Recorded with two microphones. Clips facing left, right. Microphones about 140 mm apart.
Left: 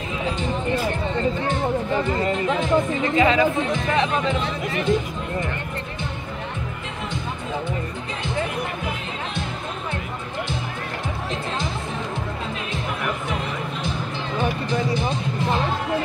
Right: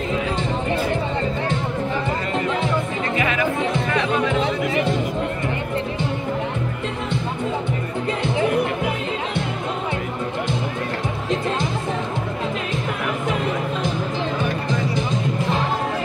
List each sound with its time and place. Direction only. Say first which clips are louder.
3.2 s music: left 6 dB; 25° left (ahead or behind)